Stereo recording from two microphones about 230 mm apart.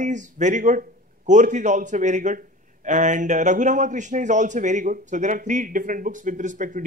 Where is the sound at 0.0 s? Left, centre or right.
Right.